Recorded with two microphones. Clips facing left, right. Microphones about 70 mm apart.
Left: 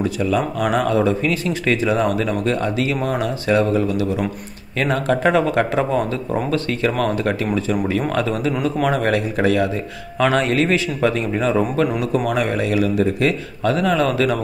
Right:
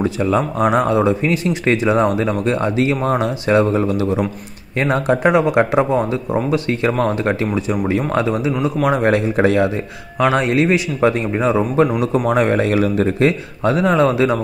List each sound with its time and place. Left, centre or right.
0.0 s speech: right
7.0 s a man's voice: right